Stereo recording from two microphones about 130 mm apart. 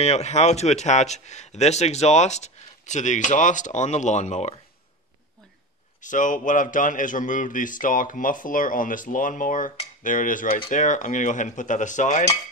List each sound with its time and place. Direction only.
0.0 s a man's voice: 55° left (ahead or behind)
5.9 s a man's voice: 80° left
10.7 s cutlery: 75° left (ahead or behind)